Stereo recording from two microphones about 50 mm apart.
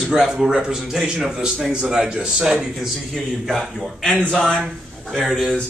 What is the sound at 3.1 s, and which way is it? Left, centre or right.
Speech, centre.